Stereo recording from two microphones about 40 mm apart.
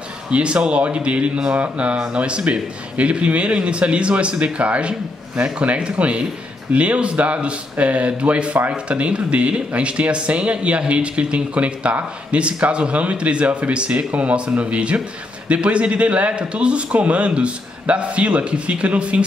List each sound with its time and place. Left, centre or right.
0.3 s a man's voice: right